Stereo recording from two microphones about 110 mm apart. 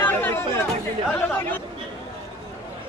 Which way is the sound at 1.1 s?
15° left (ahead or behind).